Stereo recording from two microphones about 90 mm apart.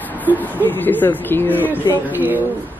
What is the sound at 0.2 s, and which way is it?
Speech, 20° left (ahead or behind).